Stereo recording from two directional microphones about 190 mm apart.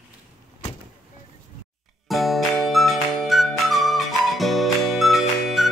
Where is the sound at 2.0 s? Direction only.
Centre (ahead or behind).